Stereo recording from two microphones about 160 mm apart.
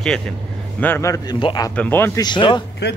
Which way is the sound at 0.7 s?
15° left (ahead or behind).